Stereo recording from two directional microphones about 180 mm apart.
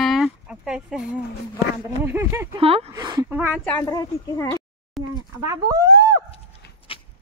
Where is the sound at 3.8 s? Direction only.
20° left (ahead or behind).